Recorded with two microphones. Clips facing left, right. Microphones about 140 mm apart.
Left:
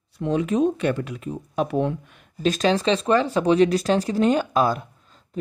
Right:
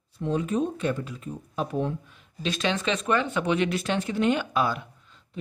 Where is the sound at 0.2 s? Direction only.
90° left; by 2.2 s 75° left (ahead or behind).